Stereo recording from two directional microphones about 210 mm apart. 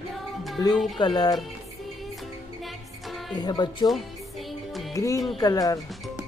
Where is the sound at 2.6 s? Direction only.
Centre (ahead or behind).